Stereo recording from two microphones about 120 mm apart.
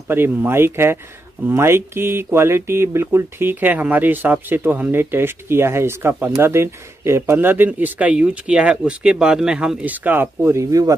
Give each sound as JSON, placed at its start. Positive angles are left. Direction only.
{"t": 0.1, "sound": "speech", "side_deg": -20}